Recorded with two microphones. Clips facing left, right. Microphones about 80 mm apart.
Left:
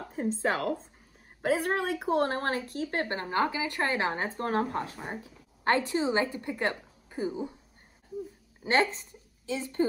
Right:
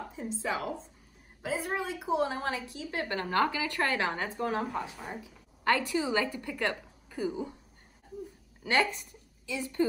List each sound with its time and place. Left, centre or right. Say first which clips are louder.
0.1 s a woman's voice: left 6 dB; left
1.4 s a woman's voice: left 5 dB; left
3.1 s a woman's voice: right 4 dB; left
4.4 s a woman's voice: left 3 dB; left
5.2 s a woman's voice: even; left
8.6 s a woman's voice: left 2 dB; left